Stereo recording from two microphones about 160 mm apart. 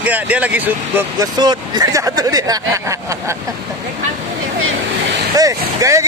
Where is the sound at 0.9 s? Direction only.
25° right (ahead or behind).